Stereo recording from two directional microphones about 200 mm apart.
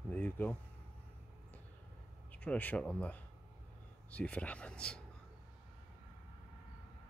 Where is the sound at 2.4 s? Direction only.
5° left (ahead or behind).